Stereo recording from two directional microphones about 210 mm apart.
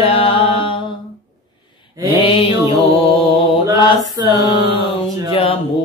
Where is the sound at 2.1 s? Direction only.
25° left (ahead or behind).